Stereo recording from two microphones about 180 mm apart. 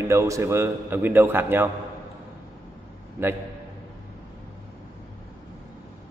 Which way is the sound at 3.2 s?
15° right (ahead or behind).